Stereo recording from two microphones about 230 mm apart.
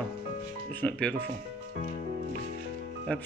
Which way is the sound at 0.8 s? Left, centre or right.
Centre.